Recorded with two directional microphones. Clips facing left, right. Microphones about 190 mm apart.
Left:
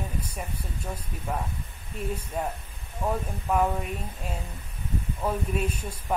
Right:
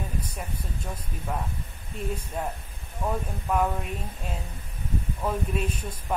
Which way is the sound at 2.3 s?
5° left (ahead or behind).